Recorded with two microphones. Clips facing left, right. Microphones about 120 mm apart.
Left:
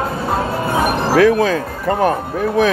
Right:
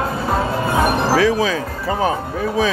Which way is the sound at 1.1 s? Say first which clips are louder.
Left 7 dB; 55° left (ahead or behind).